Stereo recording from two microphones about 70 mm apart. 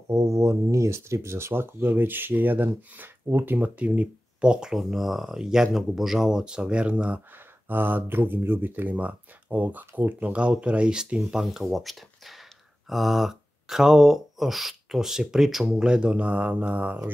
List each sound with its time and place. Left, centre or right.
0.1 s speech: right; by 7.2 s centre
7.6 s speech: right; by 15.8 s centre
15.8 s speech: centre